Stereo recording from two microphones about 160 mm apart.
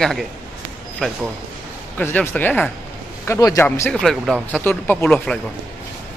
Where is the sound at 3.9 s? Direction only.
Centre (ahead or behind).